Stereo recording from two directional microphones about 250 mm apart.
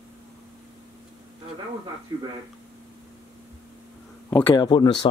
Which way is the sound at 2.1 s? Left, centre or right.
Centre.